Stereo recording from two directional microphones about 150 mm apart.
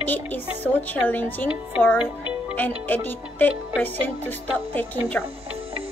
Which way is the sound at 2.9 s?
10° left (ahead or behind).